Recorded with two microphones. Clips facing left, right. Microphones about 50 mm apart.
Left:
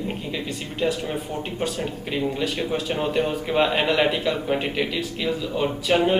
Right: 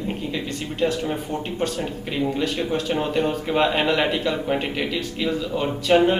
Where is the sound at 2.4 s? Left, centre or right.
Centre.